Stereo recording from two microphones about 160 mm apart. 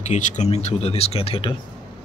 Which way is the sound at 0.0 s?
50° left (ahead or behind).